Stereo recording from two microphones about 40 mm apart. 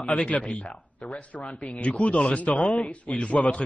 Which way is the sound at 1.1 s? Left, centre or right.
Left.